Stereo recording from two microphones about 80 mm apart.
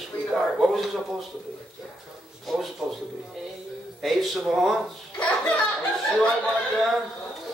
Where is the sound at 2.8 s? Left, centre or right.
Centre.